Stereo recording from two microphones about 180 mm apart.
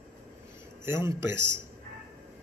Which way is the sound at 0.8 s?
15° right (ahead or behind).